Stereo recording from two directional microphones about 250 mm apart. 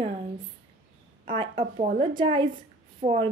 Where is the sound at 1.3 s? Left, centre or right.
Centre.